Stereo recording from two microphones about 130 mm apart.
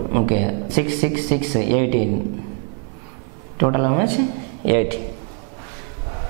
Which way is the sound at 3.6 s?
10° right (ahead or behind).